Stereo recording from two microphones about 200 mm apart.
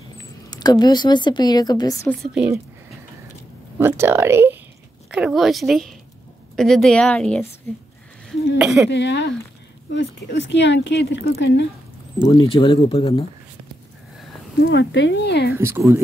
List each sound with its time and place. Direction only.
0.5 s a woman's voice: 20° left (ahead or behind)
2.0 s a woman's voice: centre (ahead or behind)
3.7 s a woman's voice: 10° right (ahead or behind); by 7.4 s 5° left (ahead or behind)
8.5 s a woman's voice: 5° right (ahead or behind)
8.9 s speech: 60° left (ahead or behind)
12.4 s a woman's voice: 25° left (ahead or behind)
14.6 s speech: 65° left (ahead or behind)
15.5 s speech: 10° right (ahead or behind)